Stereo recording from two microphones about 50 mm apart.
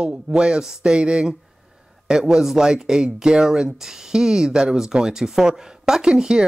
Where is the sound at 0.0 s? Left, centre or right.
Centre.